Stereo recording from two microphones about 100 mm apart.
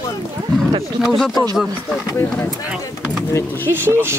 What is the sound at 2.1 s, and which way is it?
Speech, 20° left (ahead or behind).